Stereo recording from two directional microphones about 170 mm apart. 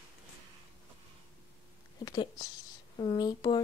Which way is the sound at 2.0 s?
25° left (ahead or behind).